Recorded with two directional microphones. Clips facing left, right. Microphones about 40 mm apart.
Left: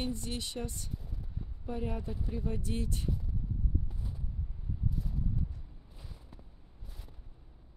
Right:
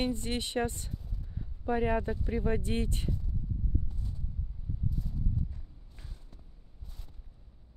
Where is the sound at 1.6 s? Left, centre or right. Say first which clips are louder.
Right 9 dB; right.